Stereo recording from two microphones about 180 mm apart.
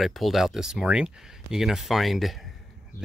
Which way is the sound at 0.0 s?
Centre (ahead or behind).